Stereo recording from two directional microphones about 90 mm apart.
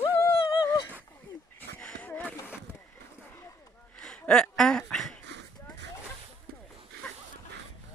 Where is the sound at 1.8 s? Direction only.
15° left (ahead or behind).